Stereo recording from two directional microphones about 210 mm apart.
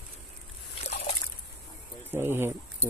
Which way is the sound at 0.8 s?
30° left (ahead or behind).